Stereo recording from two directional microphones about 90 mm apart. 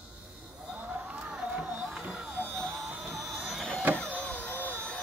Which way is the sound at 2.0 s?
10° right (ahead or behind).